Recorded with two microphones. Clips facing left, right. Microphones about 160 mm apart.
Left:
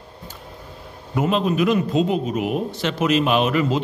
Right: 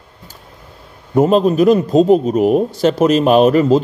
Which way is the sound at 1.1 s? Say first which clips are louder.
Right 8 dB; 40° right (ahead or behind).